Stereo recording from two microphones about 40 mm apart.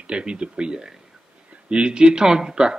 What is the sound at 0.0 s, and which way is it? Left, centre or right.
Speech, right.